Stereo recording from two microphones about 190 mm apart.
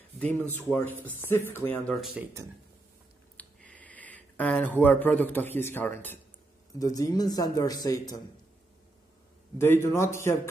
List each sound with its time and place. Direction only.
0.6 s a man's voice: 10° left (ahead or behind)
2.2 s speech: 5° right (ahead or behind)
3.3 s a man's voice: 5° left (ahead or behind)
9.6 s a man's voice: 15° left (ahead or behind)